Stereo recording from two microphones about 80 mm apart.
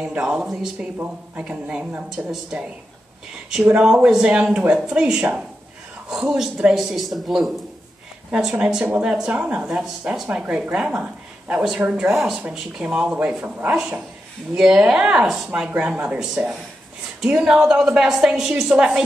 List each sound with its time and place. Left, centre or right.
0.0 s speech: centre
3.8 s speech: centre